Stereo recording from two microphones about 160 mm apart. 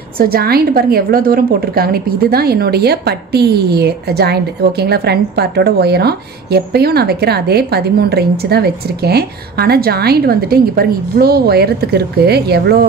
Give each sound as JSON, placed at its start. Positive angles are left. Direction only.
{"t": 0.2, "sound": "a woman's voice", "side_deg": -70}